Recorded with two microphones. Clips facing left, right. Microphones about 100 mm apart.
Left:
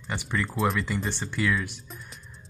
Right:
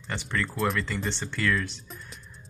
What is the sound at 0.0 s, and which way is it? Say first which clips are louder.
Speech: left 1 dB; 10° left (ahead or behind).